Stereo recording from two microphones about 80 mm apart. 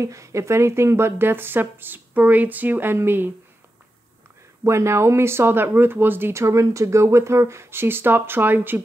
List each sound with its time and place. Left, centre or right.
0.0 s speech: right
4.6 s speech: right
6.4 s speech: right